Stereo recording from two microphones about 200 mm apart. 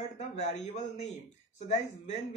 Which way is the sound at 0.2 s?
35° left (ahead or behind).